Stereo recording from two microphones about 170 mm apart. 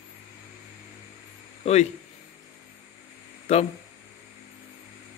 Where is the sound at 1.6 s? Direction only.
40° left (ahead or behind).